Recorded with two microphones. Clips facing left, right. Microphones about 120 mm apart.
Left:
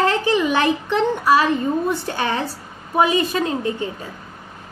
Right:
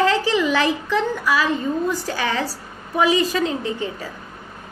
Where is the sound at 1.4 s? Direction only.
65° left (ahead or behind).